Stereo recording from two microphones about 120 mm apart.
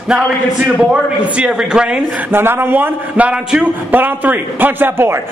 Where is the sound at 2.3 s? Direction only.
20° right (ahead or behind).